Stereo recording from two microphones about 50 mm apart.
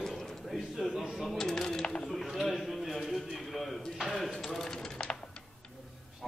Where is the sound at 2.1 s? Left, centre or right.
Centre.